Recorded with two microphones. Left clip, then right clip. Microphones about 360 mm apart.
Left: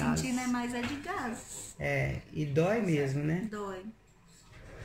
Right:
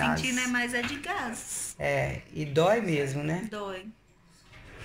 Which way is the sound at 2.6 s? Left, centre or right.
Right.